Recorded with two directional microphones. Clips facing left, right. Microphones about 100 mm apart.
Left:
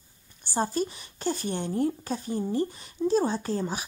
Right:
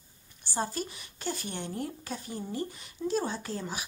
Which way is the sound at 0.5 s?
30° left (ahead or behind).